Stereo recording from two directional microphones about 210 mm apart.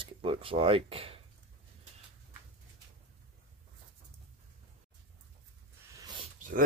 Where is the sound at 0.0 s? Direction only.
25° right (ahead or behind).